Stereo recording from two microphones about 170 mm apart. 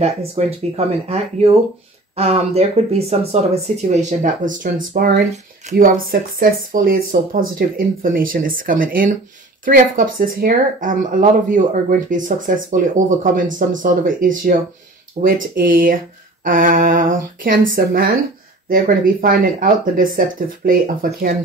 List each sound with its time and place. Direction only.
0.0 s speech: 40° right (ahead or behind); by 5.2 s 60° right (ahead or behind)
5.6 s speech: 50° right (ahead or behind)
19.2 s speech: 55° right (ahead or behind)